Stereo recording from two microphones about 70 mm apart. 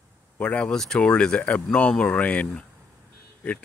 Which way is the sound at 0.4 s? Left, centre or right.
Centre.